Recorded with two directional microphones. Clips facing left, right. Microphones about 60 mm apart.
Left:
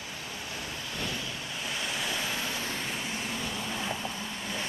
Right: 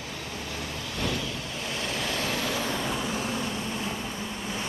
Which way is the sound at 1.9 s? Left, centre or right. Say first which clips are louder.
Right 4 dB; right.